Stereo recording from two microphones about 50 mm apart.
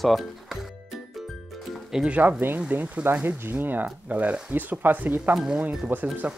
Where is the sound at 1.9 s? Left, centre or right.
Centre.